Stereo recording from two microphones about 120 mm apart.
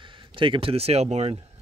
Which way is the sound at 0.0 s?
45° right (ahead or behind).